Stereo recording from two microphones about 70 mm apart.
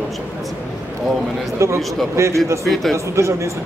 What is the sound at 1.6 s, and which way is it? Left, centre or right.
Speech, right.